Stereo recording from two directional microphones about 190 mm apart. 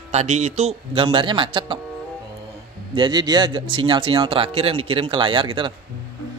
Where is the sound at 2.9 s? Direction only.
25° right (ahead or behind).